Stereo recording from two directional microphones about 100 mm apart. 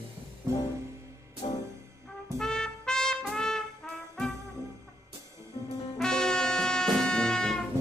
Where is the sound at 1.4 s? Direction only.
90° left.